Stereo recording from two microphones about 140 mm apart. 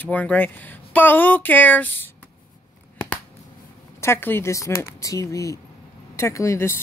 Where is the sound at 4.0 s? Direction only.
15° left (ahead or behind).